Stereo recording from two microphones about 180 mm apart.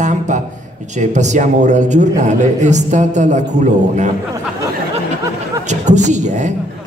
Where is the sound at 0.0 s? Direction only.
40° right (ahead or behind).